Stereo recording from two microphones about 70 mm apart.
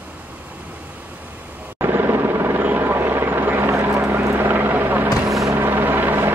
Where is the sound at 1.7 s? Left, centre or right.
Right.